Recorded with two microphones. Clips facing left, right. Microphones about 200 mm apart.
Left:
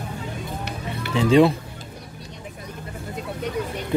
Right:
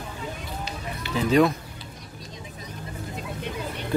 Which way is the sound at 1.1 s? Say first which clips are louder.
Left 4 dB; 30° left (ahead or behind).